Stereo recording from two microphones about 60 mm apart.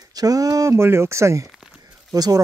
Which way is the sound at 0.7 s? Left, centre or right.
Right.